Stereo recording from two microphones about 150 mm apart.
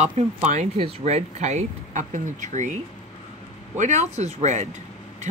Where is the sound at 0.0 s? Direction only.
50° right (ahead or behind).